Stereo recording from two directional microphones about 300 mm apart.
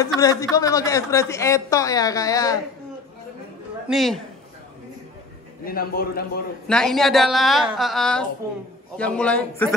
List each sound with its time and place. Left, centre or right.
0.0 s a man's voice: centre
3.9 s a woman's voice: centre
5.7 s a man's voice: left
6.7 s a woman's voice: centre